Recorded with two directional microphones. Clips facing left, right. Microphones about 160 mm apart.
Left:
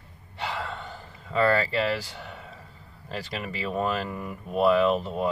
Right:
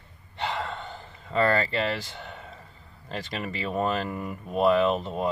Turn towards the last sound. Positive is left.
turn(degrees=5)  # may be behind; listen again after turning